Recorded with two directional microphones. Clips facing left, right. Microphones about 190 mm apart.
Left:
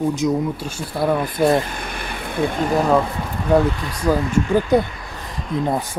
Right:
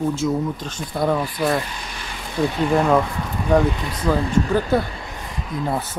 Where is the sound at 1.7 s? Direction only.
55° left (ahead or behind).